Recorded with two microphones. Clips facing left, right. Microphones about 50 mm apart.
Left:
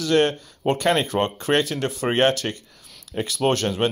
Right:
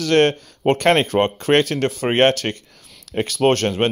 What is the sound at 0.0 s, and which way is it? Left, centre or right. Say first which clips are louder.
Speech: right 4 dB; right.